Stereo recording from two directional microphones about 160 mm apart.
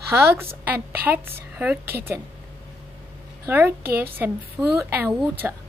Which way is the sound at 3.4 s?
15° right (ahead or behind).